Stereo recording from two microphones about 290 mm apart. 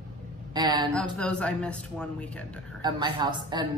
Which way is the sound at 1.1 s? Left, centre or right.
Centre.